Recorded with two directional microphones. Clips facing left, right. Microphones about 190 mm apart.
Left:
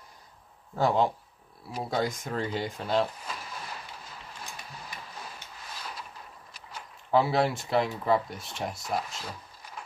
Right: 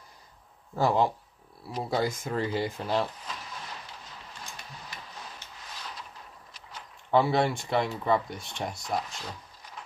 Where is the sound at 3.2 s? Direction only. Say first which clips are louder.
Left 1 dB; 10° left (ahead or behind).